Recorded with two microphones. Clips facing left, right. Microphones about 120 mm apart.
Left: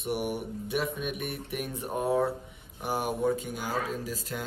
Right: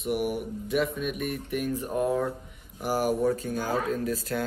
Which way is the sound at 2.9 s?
Centre (ahead or behind).